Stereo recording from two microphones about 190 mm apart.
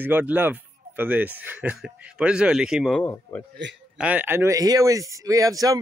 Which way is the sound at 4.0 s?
10° right (ahead or behind).